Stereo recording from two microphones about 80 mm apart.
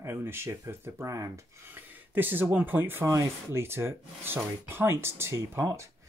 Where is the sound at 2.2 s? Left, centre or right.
Right.